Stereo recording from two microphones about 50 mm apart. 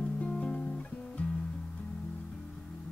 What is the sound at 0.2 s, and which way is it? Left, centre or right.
Guitar, left.